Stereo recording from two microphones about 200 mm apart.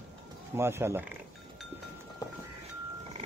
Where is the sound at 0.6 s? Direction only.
10° right (ahead or behind).